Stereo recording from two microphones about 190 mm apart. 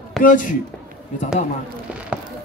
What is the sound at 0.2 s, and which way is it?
Speech, 45° left (ahead or behind).